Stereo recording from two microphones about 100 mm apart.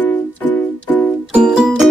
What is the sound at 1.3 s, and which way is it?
Music, 10° right (ahead or behind).